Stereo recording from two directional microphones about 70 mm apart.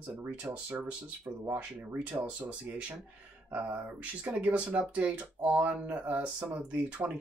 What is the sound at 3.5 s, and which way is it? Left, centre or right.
Speech, centre.